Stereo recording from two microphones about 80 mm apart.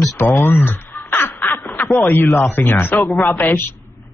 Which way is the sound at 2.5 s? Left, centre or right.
Left.